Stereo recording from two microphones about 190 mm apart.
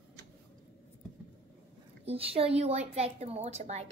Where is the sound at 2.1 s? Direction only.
30° right (ahead or behind).